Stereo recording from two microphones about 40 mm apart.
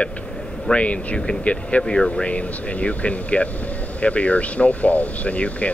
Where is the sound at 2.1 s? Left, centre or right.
Left.